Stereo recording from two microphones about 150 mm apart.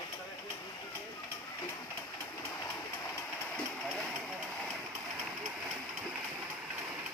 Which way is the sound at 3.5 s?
5° left (ahead or behind).